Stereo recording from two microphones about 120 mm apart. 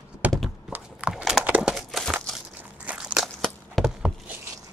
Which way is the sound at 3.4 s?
5° left (ahead or behind).